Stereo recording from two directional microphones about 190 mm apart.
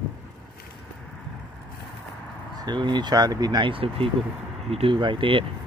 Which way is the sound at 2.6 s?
25° right (ahead or behind).